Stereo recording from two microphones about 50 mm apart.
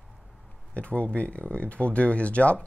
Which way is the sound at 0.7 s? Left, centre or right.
Left.